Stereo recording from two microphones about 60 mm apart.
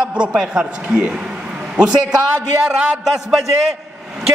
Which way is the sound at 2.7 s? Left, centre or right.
Centre.